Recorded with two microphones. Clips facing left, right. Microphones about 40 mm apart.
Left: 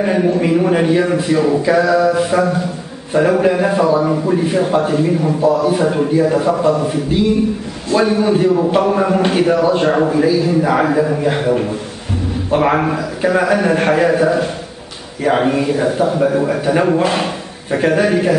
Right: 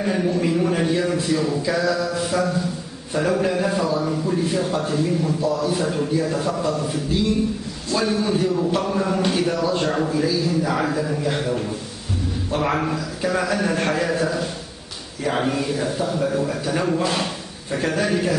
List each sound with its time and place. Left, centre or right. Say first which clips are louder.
0.0 s a man's voice: left 7 dB; left